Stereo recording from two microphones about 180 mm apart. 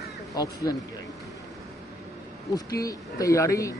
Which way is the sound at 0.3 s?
20° left (ahead or behind).